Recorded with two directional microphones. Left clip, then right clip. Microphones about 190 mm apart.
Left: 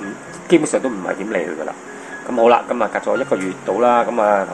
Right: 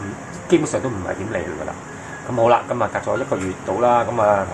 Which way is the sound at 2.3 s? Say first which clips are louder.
Left 3 dB; 40° left (ahead or behind).